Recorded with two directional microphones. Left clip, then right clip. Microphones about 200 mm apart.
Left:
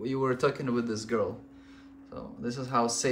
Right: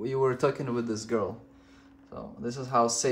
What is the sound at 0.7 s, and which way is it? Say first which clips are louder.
A man's voice: even; 35° right (ahead or behind).